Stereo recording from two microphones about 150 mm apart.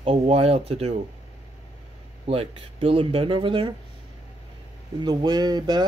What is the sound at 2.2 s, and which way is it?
Speech, 40° right (ahead or behind).